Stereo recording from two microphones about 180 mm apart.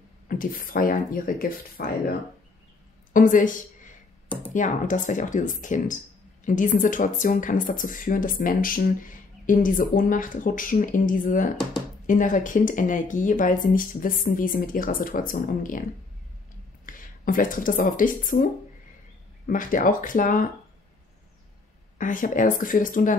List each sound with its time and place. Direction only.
0.3 s a woman's voice: 50° left (ahead or behind)
16.8 s speech: 50° left (ahead or behind)
21.9 s speech: 45° left (ahead or behind)